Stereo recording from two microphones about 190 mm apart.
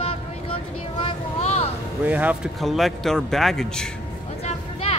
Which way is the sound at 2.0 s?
10° right (ahead or behind).